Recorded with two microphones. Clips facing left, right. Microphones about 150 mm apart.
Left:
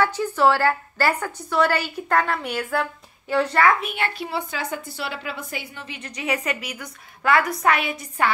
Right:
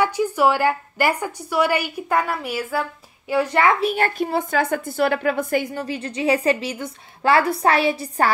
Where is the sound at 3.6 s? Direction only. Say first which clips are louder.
Right 3 dB; 30° right (ahead or behind).